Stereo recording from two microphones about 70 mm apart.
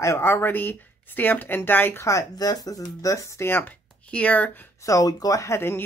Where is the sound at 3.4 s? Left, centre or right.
Left.